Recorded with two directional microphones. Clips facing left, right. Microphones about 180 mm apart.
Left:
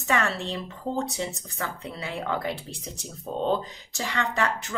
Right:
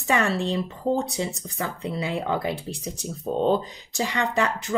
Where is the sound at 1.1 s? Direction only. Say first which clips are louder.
Right 3 dB; 15° right (ahead or behind).